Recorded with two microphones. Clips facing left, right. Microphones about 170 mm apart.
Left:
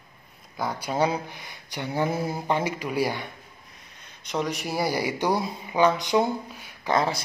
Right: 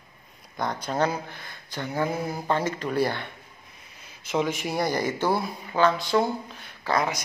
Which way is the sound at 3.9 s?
5° right (ahead or behind).